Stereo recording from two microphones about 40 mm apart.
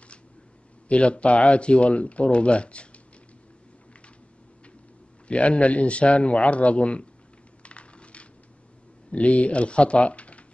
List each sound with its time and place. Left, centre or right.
0.8 s speech: left
5.3 s speech: left
7.6 s crushing: left
9.1 s speech: left